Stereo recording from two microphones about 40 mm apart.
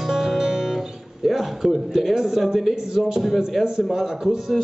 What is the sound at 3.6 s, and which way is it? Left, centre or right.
Speech, centre.